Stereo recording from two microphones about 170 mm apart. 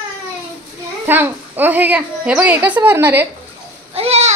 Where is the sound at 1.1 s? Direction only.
10° right (ahead or behind).